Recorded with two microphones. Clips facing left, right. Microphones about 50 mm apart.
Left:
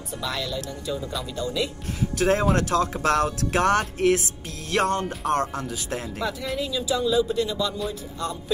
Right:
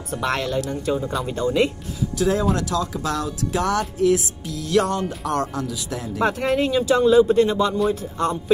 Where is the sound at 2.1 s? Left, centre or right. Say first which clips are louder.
Even; left.